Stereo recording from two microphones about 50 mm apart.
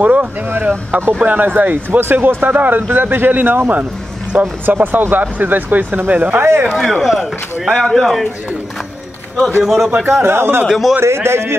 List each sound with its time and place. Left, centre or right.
0.0 s speech: right
2.0 s speech: right
6.3 s speech: right
6.7 s speech: centre
9.6 s speech: centre
10.0 s a man's voice: right
10.7 s speech: centre
11.0 s a man's voice: right